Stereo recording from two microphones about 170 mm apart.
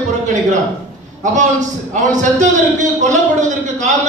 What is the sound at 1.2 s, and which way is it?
A man's voice, 45° right (ahead or behind).